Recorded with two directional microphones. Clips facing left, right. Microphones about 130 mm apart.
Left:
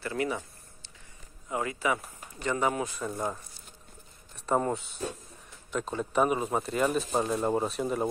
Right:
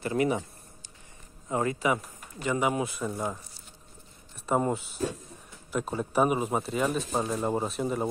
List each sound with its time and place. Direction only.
0.0 s speech: 20° right (ahead or behind)
1.5 s speech: 35° right (ahead or behind)
2.4 s speech: 15° right (ahead or behind)
4.5 s speech: 5° right (ahead or behind)